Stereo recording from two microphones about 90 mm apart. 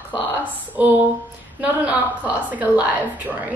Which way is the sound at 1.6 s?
15° right (ahead or behind).